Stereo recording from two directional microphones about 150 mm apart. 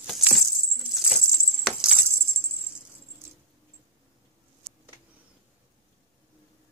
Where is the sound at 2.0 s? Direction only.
15° right (ahead or behind).